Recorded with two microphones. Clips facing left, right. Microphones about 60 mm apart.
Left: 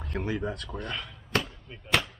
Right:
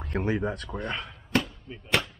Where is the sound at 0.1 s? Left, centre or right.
Right.